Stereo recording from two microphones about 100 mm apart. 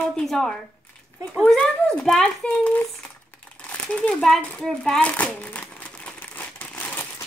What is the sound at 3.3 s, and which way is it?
Crumpling, 15° left (ahead or behind).